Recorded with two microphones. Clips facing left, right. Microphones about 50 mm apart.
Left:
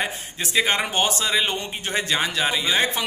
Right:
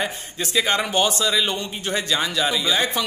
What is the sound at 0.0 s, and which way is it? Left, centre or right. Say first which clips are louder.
A man's voice: right 1 dB; left.